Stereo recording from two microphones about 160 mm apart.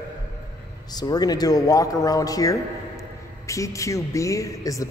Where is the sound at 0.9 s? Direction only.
25° left (ahead or behind).